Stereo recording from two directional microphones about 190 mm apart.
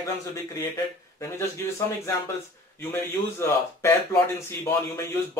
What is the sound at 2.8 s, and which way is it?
Speech, 15° left (ahead or behind).